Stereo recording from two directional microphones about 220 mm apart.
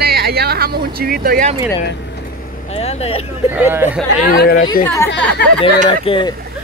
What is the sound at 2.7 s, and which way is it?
Speech, 25° left (ahead or behind).